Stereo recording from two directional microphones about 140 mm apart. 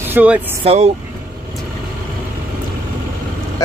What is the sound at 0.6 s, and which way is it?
Speech, 50° right (ahead or behind).